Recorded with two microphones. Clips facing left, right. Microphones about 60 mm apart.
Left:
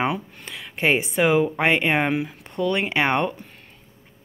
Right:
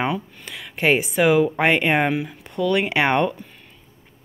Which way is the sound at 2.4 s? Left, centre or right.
Left.